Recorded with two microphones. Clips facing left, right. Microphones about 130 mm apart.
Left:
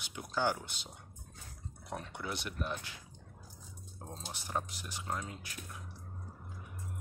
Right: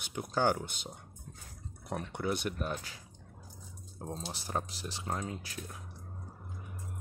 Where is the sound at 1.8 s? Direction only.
50° right (ahead or behind).